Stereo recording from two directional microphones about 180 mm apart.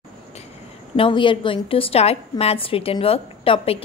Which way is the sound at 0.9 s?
30° left (ahead or behind).